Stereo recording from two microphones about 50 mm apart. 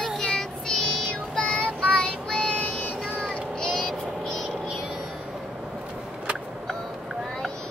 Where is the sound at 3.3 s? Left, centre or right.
Centre.